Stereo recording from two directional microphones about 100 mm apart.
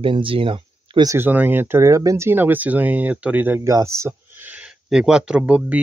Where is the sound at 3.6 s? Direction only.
30° right (ahead or behind).